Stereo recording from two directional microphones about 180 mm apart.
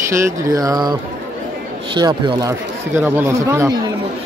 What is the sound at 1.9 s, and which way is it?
Speech, 25° right (ahead or behind).